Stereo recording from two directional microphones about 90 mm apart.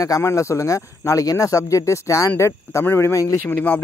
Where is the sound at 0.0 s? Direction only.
35° left (ahead or behind).